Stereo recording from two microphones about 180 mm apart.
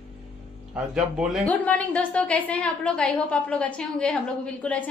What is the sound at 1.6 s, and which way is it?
A woman's voice, 10° left (ahead or behind).